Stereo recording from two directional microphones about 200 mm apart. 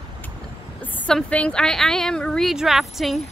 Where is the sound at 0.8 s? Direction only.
5° left (ahead or behind).